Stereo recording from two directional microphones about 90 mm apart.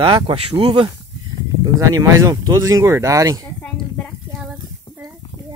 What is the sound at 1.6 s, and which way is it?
Speech, 45° right (ahead or behind).